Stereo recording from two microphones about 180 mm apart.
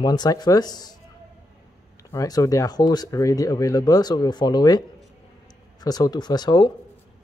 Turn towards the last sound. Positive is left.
turn(degrees=25)  # may be behind; listen again after turning